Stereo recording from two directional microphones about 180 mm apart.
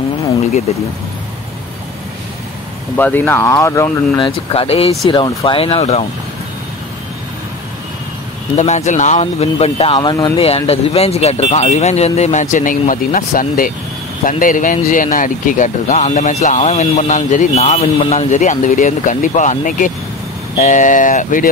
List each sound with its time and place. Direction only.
3.0 s speech: 10° left (ahead or behind)
4.5 s speech: 30° left (ahead or behind)
8.5 s speech: 40° left (ahead or behind); by 10.3 s 20° left (ahead or behind)
10.3 s speech: 35° left (ahead or behind)